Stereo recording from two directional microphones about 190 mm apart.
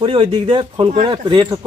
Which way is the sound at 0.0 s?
30° right (ahead or behind).